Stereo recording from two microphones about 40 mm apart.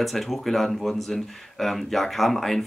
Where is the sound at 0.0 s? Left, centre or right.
Centre.